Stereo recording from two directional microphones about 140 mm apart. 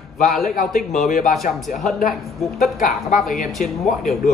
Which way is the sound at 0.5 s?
65° left (ahead or behind).